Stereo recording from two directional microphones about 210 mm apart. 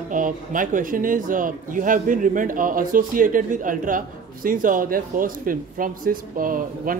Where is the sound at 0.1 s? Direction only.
40° right (ahead or behind).